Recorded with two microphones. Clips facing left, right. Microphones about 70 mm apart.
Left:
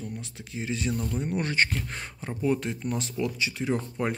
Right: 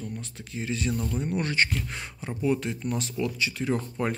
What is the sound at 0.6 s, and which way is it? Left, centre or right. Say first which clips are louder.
Speech: right 1 dB; left.